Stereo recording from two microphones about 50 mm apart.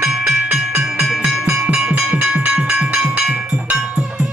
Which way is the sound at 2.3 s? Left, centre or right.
Centre.